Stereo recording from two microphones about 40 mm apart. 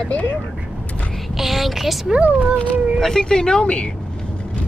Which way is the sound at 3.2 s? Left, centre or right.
Centre.